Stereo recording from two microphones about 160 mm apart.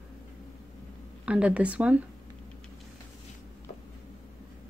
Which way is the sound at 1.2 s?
5° right (ahead or behind).